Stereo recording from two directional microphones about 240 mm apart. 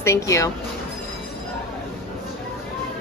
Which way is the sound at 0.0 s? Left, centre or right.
Centre.